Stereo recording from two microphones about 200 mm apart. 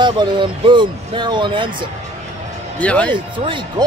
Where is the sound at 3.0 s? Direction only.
25° right (ahead or behind).